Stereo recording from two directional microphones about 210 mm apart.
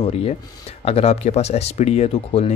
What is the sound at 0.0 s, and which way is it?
Speech, 30° left (ahead or behind).